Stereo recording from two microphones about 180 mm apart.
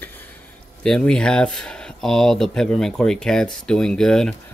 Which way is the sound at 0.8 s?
5° left (ahead or behind).